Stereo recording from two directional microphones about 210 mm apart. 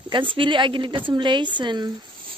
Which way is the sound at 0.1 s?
25° right (ahead or behind).